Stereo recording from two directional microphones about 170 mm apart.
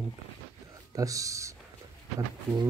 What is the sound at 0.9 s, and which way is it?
Speech, 20° right (ahead or behind).